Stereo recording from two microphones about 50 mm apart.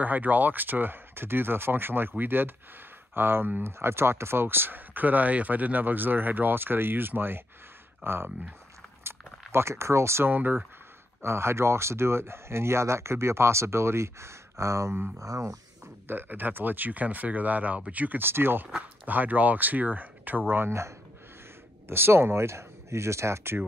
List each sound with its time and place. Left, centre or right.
0.0 s speech: right
3.6 s speech: right
9.5 s speech: right
10.2 s speech: right
11.2 s speech: right
16.1 s speech: right
18.2 s speech: right
18.8 s speech: right
21.8 s speech: right